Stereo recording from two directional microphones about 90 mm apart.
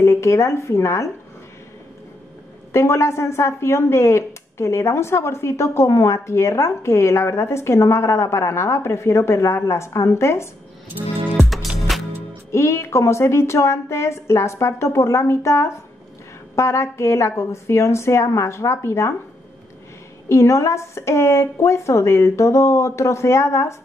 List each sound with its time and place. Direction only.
0.0 s speech: 35° left (ahead or behind)
2.7 s speech: 30° left (ahead or behind)
11.4 s music: centre (ahead or behind)
12.4 s speech: 30° left (ahead or behind)
20.2 s speech: 30° left (ahead or behind)